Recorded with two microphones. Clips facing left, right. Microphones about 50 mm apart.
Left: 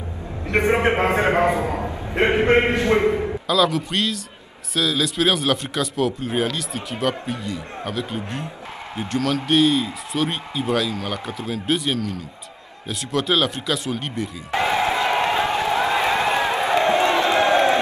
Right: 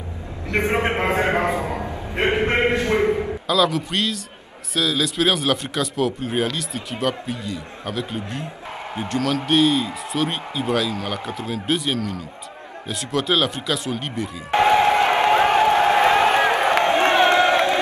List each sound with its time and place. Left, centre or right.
0.6 s a man's voice: left
3.4 s speech: centre
14.5 s a sound: right